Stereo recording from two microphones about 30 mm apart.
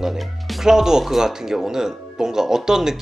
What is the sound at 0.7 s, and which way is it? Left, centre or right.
A woman's voice, centre.